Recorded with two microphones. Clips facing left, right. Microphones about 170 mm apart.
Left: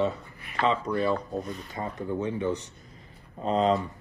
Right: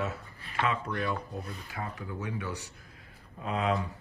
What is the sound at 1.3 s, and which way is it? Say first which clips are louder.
Speech: left 7 dB; 35° left (ahead or behind).